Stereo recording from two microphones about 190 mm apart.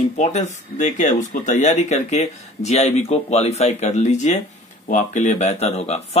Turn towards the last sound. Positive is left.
turn(degrees=35)  # may be behind; listen again after turning